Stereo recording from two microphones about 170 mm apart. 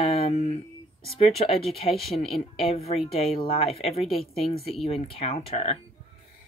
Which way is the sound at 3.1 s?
35° left (ahead or behind).